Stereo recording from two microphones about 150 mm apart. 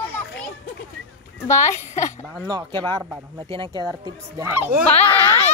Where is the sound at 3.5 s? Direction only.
30° right (ahead or behind).